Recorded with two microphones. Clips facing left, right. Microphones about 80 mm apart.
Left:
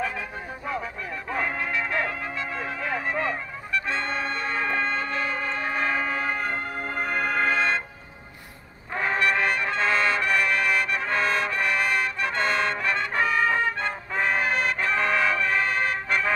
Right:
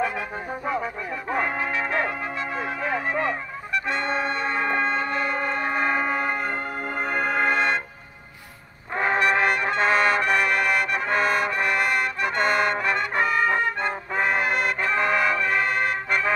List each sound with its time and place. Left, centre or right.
1.3 s music: centre
8.9 s brass instrument: centre